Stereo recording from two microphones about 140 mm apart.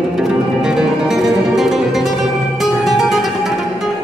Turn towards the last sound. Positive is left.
turn(degrees=0)  # may be behind; listen again after turning